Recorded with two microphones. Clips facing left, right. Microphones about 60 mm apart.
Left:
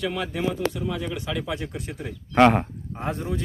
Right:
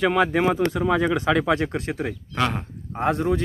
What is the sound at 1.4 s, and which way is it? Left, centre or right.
Speech, right.